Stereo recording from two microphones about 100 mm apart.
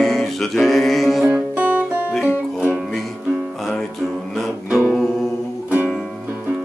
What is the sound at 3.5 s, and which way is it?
Music, centre (ahead or behind).